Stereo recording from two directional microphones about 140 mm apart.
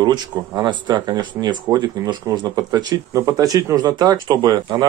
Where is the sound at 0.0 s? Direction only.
30° right (ahead or behind).